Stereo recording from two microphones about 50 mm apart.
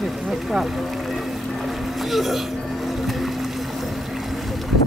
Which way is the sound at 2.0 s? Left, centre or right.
Centre.